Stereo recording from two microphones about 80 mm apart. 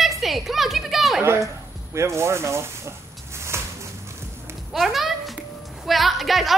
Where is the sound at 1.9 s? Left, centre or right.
Right.